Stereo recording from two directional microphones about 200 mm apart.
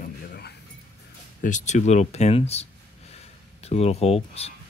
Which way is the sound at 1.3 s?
40° left (ahead or behind).